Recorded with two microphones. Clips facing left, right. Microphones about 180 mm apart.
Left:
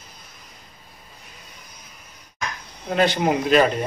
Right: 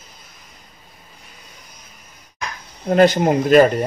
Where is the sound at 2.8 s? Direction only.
45° right (ahead or behind).